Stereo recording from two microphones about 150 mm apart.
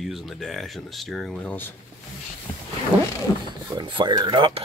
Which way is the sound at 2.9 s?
5° right (ahead or behind).